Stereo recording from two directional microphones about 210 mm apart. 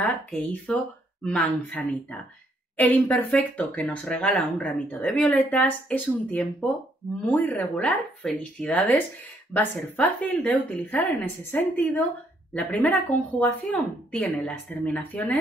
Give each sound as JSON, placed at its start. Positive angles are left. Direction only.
{"t": 0.5, "sound": "a woman's voice", "side_deg": 5}